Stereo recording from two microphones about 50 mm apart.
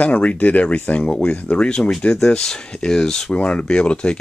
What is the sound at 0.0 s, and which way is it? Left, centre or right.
Speech, left.